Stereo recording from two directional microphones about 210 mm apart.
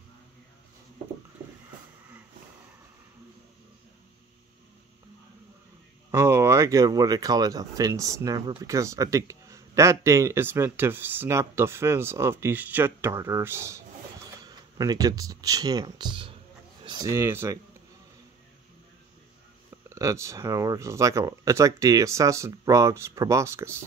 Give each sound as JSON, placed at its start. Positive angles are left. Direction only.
{"t": 6.1, "sound": "speech", "side_deg": -10}
{"t": 19.9, "sound": "speech", "side_deg": -15}